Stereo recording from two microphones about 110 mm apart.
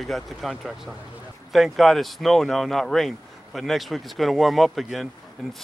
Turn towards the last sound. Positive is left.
turn(degrees=0)  # may be behind; listen again after turning